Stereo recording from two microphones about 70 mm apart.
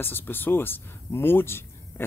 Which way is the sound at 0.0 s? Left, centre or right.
Left.